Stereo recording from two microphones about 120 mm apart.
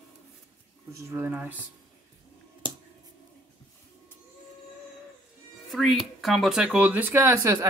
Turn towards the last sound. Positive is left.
turn(degrees=-30)  # may be behind; listen again after turning